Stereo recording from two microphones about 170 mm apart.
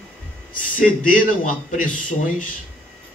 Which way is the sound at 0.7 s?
55° left (ahead or behind).